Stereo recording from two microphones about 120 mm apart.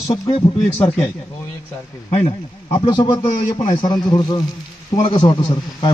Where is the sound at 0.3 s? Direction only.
45° left (ahead or behind).